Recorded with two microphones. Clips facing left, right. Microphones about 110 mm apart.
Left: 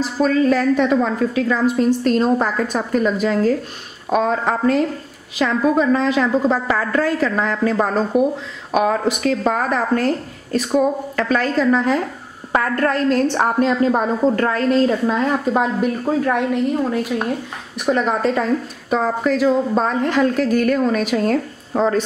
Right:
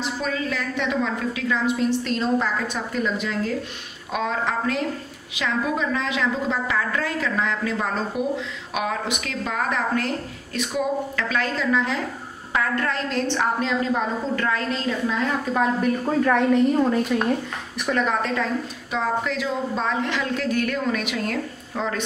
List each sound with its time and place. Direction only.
0.0 s a woman's voice: 40° left (ahead or behind)
15.8 s a woman's voice: 5° left (ahead or behind)
18.0 s a woman's voice: 35° left (ahead or behind)